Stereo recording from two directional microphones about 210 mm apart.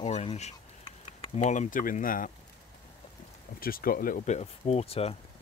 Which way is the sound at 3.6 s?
45° left (ahead or behind).